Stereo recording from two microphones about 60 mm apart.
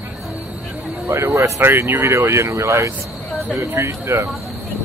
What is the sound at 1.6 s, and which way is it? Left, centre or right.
Speech, right.